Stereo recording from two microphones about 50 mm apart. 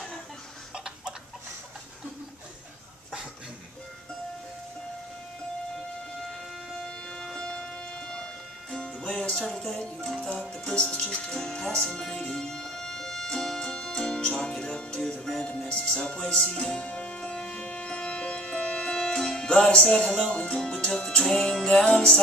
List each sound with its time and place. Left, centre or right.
0.7 s a sound: centre
6.8 s music: centre
16.8 s music: left